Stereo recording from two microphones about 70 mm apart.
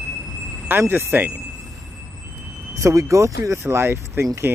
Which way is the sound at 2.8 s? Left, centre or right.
Right.